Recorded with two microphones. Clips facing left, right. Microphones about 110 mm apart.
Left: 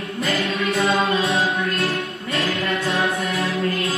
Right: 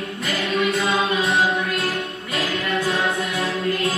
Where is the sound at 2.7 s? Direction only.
30° left (ahead or behind).